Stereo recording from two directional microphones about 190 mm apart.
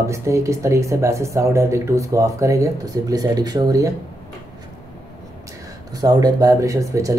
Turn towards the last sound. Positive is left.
turn(degrees=-15)  # may be behind; listen again after turning